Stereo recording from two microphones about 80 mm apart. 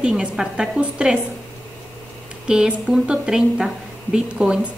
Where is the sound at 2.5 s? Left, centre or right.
Centre.